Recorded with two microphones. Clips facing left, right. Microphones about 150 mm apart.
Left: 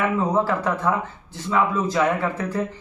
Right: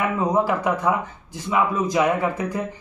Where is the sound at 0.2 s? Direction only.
15° right (ahead or behind).